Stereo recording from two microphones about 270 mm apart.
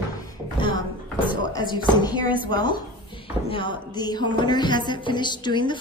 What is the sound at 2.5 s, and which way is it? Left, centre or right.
Speech, centre.